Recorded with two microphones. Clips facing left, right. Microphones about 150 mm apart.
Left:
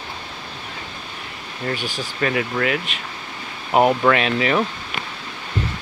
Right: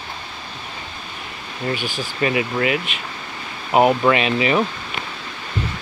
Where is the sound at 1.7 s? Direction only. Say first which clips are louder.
Right 1 dB; centre (ahead or behind).